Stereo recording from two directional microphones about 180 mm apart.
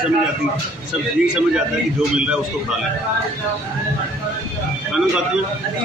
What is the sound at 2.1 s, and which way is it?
Speech, 5° right (ahead or behind).